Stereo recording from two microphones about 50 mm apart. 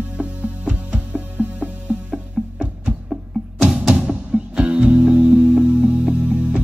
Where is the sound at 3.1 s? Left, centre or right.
Centre.